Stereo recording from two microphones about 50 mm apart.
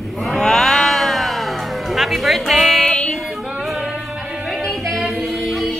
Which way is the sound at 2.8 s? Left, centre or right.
Left.